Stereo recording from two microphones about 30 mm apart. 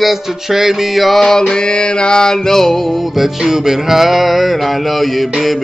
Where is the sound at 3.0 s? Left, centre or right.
Centre.